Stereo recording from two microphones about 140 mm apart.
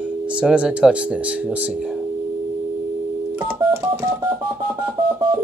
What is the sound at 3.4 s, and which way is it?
Telephone dialing, 15° right (ahead or behind).